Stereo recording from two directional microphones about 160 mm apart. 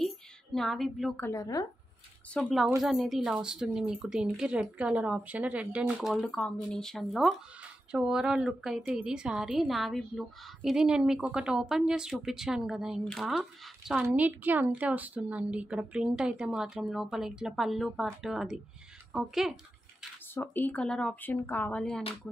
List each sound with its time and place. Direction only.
0.0 s a sound: centre (ahead or behind)
1.2 s speech: 20° left (ahead or behind)
2.3 s a woman's voice: centre (ahead or behind)
19.1 s bathtub: centre (ahead or behind)
20.3 s speech: 10° left (ahead or behind)